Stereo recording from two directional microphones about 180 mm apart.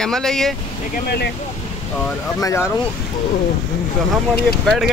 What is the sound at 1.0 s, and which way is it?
Speech, 65° left (ahead or behind).